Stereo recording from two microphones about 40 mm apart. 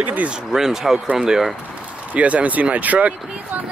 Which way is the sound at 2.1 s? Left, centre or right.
Right.